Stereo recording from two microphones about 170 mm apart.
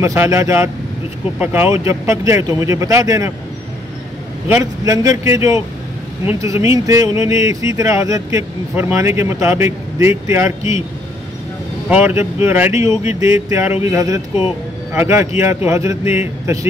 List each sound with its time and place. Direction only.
0.0 s speech: 15° right (ahead or behind)
4.5 s speech: 20° right (ahead or behind)
11.9 s speech: 10° right (ahead or behind)